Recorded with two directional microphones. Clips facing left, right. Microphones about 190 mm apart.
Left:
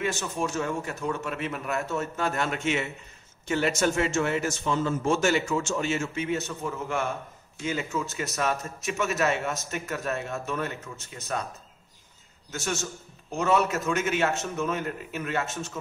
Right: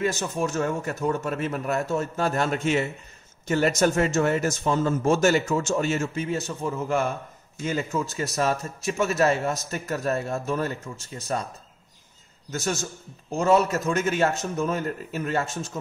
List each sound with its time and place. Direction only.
0.0 s a man's voice: 40° right (ahead or behind)
12.4 s a man's voice: 35° right (ahead or behind)